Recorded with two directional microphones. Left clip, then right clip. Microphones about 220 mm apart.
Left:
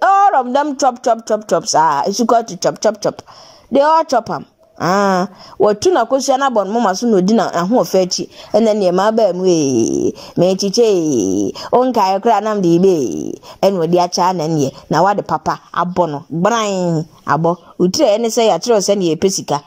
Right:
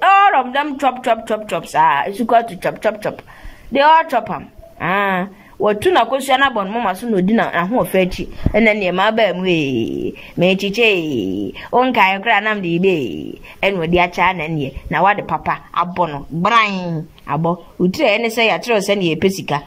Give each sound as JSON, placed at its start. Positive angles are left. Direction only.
{"t": 0.0, "sound": "speech", "side_deg": 25}